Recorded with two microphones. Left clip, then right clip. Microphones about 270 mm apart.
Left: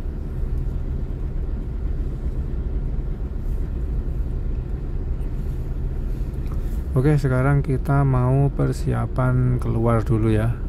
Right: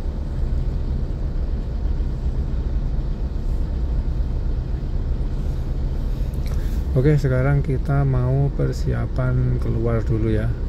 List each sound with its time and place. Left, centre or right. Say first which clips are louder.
7.0 s speech: right 1 dB; centre